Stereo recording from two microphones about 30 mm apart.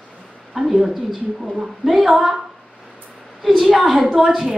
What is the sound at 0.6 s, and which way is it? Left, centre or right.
Speech, centre.